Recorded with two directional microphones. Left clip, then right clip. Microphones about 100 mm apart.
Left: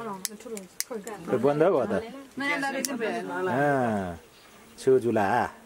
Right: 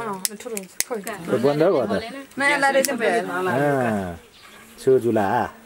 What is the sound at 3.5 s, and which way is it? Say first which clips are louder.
Speech: right 2 dB; 30° left (ahead or behind).